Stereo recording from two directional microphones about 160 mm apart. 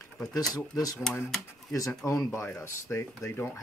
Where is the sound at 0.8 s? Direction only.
25° left (ahead or behind).